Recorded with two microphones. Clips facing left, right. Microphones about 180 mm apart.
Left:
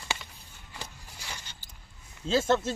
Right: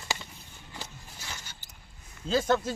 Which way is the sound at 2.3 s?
Centre (ahead or behind).